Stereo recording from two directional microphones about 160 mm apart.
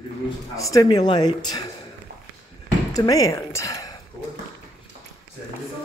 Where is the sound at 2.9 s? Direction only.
20° left (ahead or behind).